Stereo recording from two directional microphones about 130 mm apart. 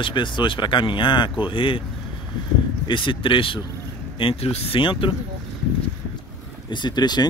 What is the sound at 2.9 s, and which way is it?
Speech, 40° left (ahead or behind).